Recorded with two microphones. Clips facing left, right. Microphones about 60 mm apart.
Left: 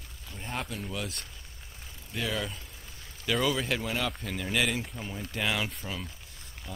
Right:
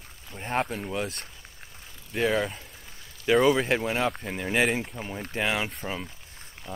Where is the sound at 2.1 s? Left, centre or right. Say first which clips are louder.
Right 8 dB; right.